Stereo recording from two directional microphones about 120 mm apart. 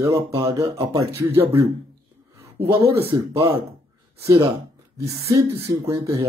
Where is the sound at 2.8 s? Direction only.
50° right (ahead or behind).